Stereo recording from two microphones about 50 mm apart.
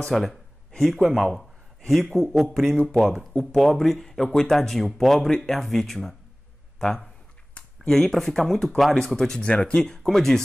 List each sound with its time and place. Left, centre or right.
0.1 s a sound: centre
0.7 s speech: centre
9.4 s speech: left